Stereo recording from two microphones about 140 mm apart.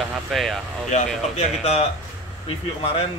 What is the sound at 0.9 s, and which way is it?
Speech, 50° left (ahead or behind).